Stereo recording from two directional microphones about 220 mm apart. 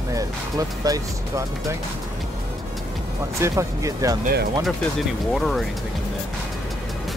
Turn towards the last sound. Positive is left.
turn(degrees=0)  # may be behind; listen again after turning